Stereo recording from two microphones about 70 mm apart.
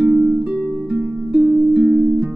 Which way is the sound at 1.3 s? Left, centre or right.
Right.